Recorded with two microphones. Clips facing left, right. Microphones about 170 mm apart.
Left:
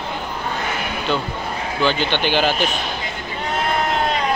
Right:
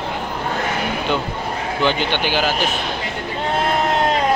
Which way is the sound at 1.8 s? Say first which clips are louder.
Even; 15° right (ahead or behind).